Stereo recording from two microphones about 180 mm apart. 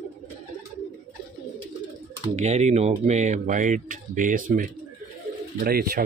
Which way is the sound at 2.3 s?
40° right (ahead or behind).